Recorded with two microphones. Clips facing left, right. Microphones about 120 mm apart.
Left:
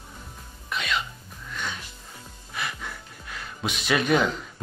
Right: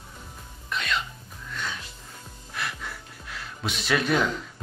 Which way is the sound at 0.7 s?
5° left (ahead or behind).